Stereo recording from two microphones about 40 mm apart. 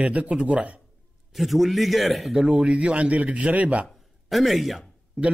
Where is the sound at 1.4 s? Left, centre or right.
Centre.